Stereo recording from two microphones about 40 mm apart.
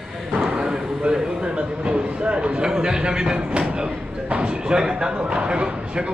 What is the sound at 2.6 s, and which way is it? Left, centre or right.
A man's voice, centre.